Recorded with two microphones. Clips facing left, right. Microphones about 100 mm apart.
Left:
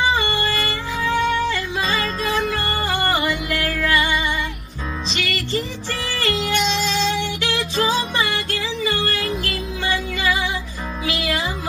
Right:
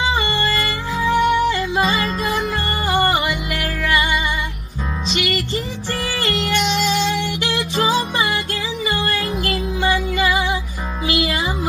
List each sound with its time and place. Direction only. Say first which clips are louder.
0.1 s music: right 1 dB; 25° right (ahead or behind)
1.0 s music: right 4 dB; 5° right (ahead or behind)
2.5 s music: right 3 dB; 25° right (ahead or behind)
7.1 s music: right 1 dB; 20° right (ahead or behind)
9.5 s music: right 5 dB; 30° right (ahead or behind)